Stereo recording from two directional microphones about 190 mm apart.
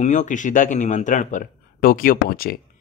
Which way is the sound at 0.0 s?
40° left (ahead or behind).